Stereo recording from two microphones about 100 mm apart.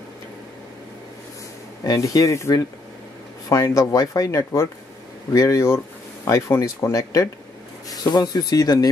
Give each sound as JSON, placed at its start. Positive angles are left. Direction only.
{"t": 1.9, "sound": "speech", "side_deg": 35}